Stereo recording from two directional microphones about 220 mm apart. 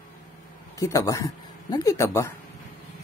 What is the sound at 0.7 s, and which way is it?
Speech, 15° left (ahead or behind).